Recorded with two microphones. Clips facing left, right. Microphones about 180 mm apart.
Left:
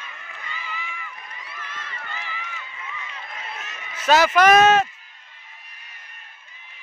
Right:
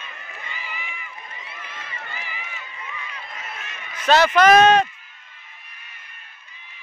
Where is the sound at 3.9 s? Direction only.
5° left (ahead or behind).